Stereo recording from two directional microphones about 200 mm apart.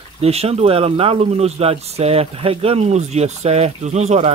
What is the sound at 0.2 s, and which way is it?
Speech, 30° right (ahead or behind).